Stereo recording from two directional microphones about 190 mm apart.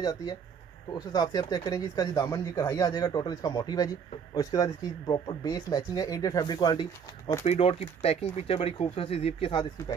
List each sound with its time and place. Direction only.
0.0 s speech: 20° left (ahead or behind)
7.4 s speech: 35° left (ahead or behind)